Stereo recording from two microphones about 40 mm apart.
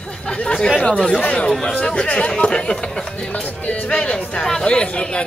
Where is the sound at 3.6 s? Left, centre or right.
Left.